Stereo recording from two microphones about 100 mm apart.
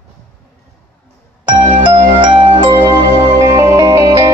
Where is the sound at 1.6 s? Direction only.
60° right (ahead or behind).